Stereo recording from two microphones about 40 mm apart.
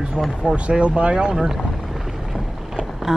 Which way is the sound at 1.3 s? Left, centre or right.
Centre.